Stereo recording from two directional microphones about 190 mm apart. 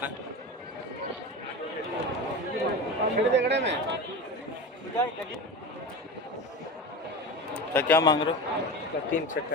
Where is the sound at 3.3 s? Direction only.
65° right (ahead or behind).